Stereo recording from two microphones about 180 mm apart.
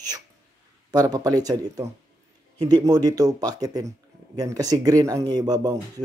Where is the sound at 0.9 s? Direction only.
20° right (ahead or behind).